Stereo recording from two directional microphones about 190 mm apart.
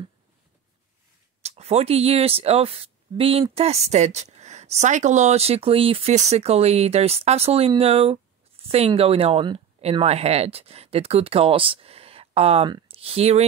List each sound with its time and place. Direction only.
1.4 s speech: 35° right (ahead or behind)